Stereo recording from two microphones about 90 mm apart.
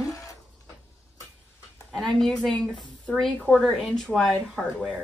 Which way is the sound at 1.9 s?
5° left (ahead or behind).